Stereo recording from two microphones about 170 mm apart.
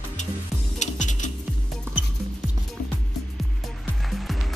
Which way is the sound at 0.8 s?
45° left (ahead or behind).